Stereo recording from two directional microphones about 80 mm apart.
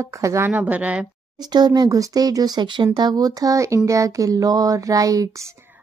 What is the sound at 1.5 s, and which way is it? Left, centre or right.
Speech, right.